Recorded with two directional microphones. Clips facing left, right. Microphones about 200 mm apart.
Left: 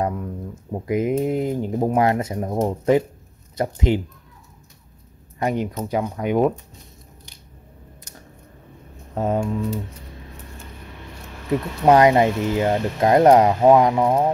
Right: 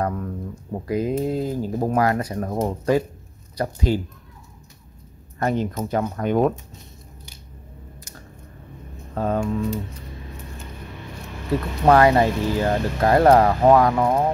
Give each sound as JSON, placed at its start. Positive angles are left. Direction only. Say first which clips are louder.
{"t": 0.0, "sound": "speech", "louder": "left 1 dB", "side_deg": 10}
{"t": 2.3, "sound": "speech", "louder": "left 2 dB", "side_deg": 10}
{"t": 5.4, "sound": "speech", "louder": "even", "side_deg": 15}
{"t": 9.1, "sound": "speech", "louder": "left 1 dB", "side_deg": 20}
{"t": 11.8, "sound": "speech", "louder": "left 1 dB", "side_deg": 20}